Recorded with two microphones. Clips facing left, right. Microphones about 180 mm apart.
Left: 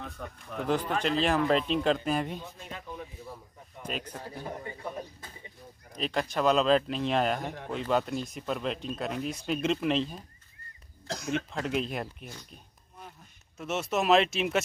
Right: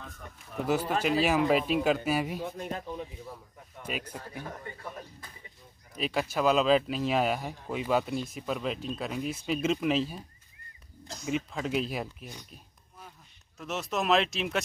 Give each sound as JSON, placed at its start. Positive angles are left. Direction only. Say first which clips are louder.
{"t": 0.2, "sound": "speech", "louder": "left 6 dB", "side_deg": 90}
{"t": 0.7, "sound": "speech", "louder": "right 1 dB", "side_deg": -5}
{"t": 2.4, "sound": "speech", "louder": "right 8 dB", "side_deg": -50}
{"t": 3.8, "sound": "speech", "louder": "even", "side_deg": 5}
{"t": 4.6, "sound": "a man's voice", "louder": "left 3 dB", "side_deg": 20}
{"t": 5.9, "sound": "speech", "louder": "even", "side_deg": -5}
{"t": 11.2, "sound": "speech", "louder": "right 1 dB", "side_deg": -5}
{"t": 13.6, "sound": "speech", "louder": "left 3 dB", "side_deg": 0}